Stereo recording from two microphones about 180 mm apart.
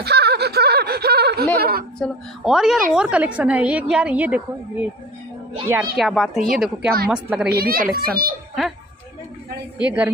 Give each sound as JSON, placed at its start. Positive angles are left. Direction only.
{"t": 0.0, "sound": "a sound", "side_deg": -65}
{"t": 1.6, "sound": "a child's voice", "side_deg": -60}
{"t": 2.0, "sound": "a woman's voice", "side_deg": 0}
{"t": 5.9, "sound": "a woman's voice", "side_deg": 0}
{"t": 7.4, "sound": "a child's voice", "side_deg": -60}
{"t": 9.8, "sound": "a woman's voice", "side_deg": -10}